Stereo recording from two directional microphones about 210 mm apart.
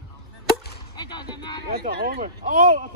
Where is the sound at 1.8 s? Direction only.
45° right (ahead or behind).